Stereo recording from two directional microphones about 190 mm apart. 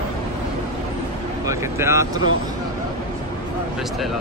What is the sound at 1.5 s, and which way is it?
Speech, 15° right (ahead or behind).